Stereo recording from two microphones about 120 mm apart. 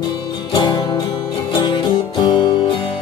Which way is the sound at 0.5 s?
40° left (ahead or behind).